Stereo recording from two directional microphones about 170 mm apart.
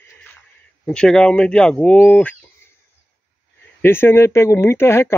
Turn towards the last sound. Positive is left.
turn(degrees=15)  # may be behind; listen again after turning